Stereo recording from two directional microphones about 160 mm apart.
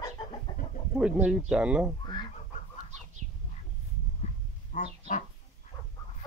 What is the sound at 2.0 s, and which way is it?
Duck, 30° left (ahead or behind).